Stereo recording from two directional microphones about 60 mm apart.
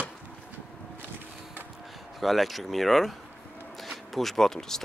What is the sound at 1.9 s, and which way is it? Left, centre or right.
Speech, centre.